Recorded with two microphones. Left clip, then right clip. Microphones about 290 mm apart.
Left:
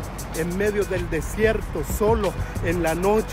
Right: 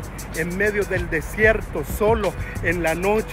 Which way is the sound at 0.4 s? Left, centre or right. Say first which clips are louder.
Right 2 dB; centre.